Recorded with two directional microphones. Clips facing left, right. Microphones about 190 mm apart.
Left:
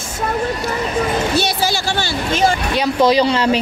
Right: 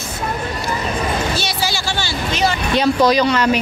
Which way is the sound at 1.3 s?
55° left (ahead or behind).